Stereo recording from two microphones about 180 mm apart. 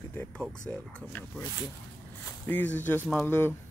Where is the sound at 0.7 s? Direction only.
10° left (ahead or behind).